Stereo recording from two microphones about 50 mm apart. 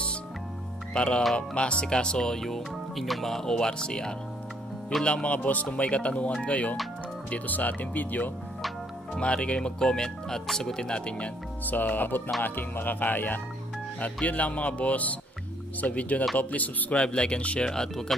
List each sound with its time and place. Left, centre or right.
0.9 s speech: left
3.5 s speech: centre; by 8.3 s left
9.1 s speech: left
11.6 s speech: left
16.9 s speech: centre
17.6 s speech: centre